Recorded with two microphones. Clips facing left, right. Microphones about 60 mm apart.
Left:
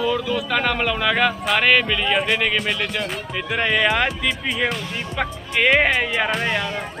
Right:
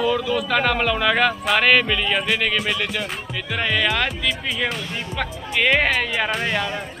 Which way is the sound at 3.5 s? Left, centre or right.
Centre.